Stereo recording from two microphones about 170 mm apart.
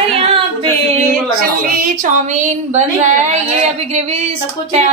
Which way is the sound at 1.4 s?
50° right (ahead or behind).